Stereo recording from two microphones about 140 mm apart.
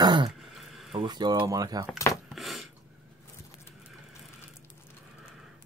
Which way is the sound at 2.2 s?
Centre (ahead or behind).